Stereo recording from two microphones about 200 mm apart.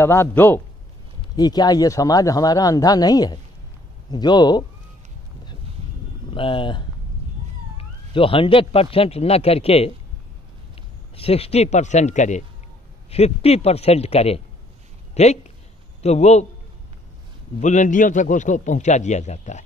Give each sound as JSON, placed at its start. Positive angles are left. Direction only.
{"t": 0.0, "sound": "a man's voice", "side_deg": 10}
{"t": 6.3, "sound": "speech", "side_deg": 25}
{"t": 11.1, "sound": "a man's voice", "side_deg": 30}
{"t": 17.6, "sound": "a man's voice", "side_deg": 35}